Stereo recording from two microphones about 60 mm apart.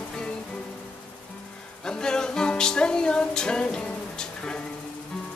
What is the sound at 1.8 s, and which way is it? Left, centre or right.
Music, centre.